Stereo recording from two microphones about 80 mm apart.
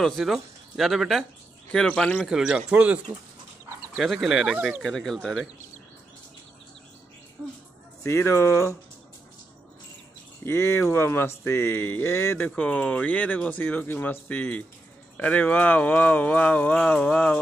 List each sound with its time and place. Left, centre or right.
0.0 s speech: centre
1.7 s speech: centre
2.2 s speech: centre
2.7 s speech: centre
4.0 s speech: centre
4.8 s speech: centre
8.0 s speech: left
10.4 s speech: left
12.4 s speech: centre